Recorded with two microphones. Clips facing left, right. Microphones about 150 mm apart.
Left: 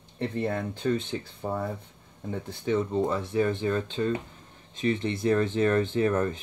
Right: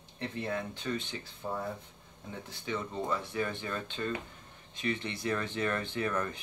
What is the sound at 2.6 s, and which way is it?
Speech, 35° left (ahead or behind).